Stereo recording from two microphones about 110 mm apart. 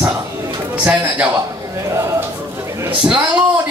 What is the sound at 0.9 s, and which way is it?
Speech, 10° right (ahead or behind).